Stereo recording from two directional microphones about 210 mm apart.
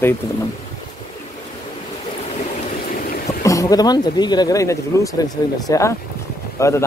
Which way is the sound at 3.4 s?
15° left (ahead or behind).